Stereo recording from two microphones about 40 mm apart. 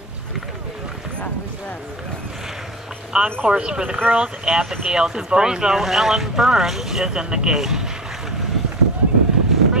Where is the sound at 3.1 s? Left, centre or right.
Centre.